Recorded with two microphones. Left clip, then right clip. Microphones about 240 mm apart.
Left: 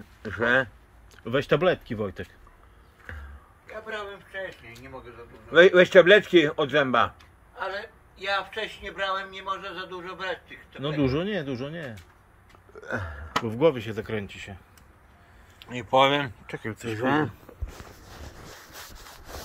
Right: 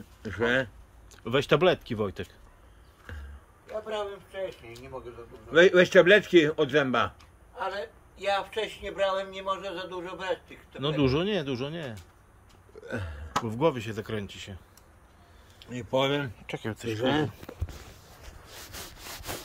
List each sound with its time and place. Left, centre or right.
0.3 s speech: centre
3.6 s speech: right
5.5 s speech: centre
7.5 s a man's voice: right
10.8 s speech: centre
15.6 s speech: centre
16.9 s speech: left